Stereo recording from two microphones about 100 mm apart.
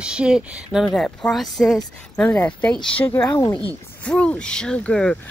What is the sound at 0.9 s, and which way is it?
Speech, 10° left (ahead or behind).